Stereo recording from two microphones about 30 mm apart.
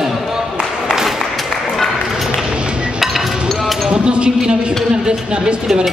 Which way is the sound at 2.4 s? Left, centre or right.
Right.